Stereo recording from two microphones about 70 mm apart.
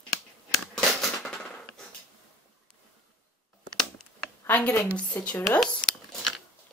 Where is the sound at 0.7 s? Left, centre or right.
Centre.